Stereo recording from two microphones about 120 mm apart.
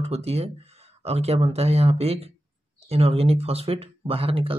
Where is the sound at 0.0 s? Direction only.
60° right (ahead or behind).